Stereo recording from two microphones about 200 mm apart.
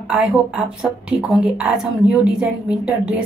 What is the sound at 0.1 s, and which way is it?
Speech, 5° right (ahead or behind).